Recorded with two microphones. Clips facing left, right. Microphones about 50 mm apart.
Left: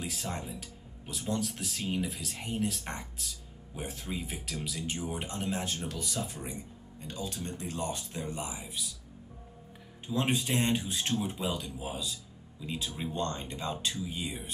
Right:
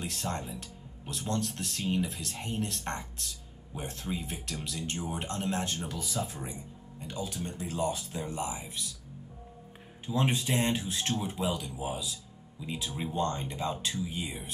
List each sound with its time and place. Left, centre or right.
0.0 s speech: centre
7.1 s speech: right
8.1 s speech: centre
10.0 s speech: centre